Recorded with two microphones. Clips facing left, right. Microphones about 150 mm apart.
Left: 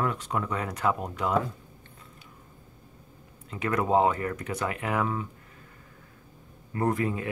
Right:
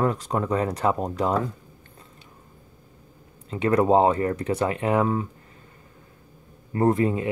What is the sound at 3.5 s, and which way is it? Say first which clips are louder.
Speech: right 6 dB; 30° right (ahead or behind).